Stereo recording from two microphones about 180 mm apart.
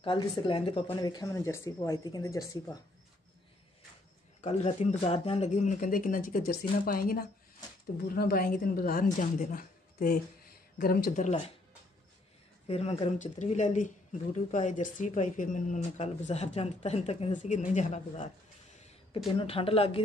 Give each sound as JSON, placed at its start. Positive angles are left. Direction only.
{"t": 0.0, "sound": "speech", "side_deg": 25}
{"t": 4.4, "sound": "speech", "side_deg": 35}
{"t": 12.6, "sound": "speech", "side_deg": 35}
{"t": 19.3, "sound": "speech", "side_deg": 30}